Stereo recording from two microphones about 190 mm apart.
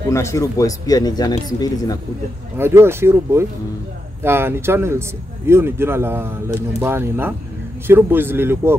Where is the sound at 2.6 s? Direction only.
15° right (ahead or behind).